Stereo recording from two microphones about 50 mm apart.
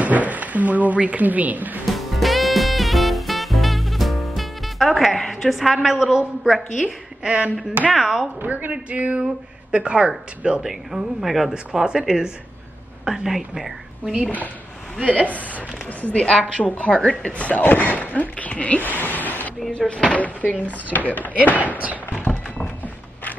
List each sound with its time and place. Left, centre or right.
0.0 s speech: right
1.9 s music: centre
5.3 s a woman's voice: centre
7.2 s speech: right
7.9 s a woman's voice: centre
8.4 s speech: right
10.6 s speech: centre
11.5 s a woman's voice: centre
15.0 s a woman's voice: left
19.9 s a woman's voice: left
22.1 s a sound: left